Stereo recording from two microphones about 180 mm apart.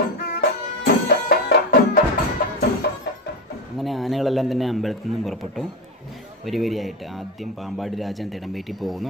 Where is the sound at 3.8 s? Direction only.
Centre (ahead or behind).